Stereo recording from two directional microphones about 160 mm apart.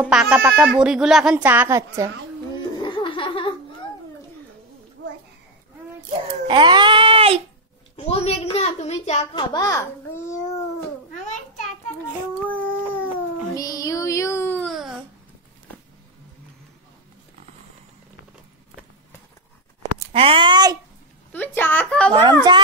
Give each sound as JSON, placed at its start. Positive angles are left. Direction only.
{"t": 0.0, "sound": "speech", "side_deg": -5}
{"t": 2.8, "sound": "music", "side_deg": 30}
{"t": 6.4, "sound": "baby cry", "side_deg": -30}
{"t": 7.9, "sound": "a child's voice", "side_deg": 40}
{"t": 9.3, "sound": "a child's voice", "side_deg": 25}
{"t": 12.4, "sound": "dog", "side_deg": 10}
{"t": 13.6, "sound": "child singing", "side_deg": 20}
{"t": 14.7, "sound": "babbling", "side_deg": -5}
{"t": 20.1, "sound": "speech", "side_deg": -35}
{"t": 21.3, "sound": "a woman's voice", "side_deg": 10}
{"t": 22.1, "sound": "speech", "side_deg": -25}